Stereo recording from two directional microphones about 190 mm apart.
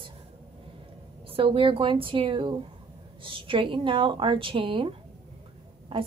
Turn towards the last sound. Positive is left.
turn(degrees=-30)  # may be behind; listen again after turning